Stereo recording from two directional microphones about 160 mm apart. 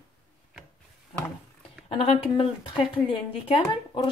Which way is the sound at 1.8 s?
35° left (ahead or behind).